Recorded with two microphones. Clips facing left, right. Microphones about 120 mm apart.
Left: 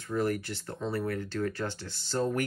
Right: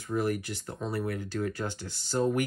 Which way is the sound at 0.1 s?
15° right (ahead or behind).